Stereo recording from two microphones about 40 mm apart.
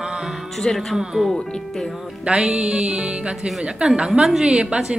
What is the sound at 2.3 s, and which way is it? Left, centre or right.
Music, right.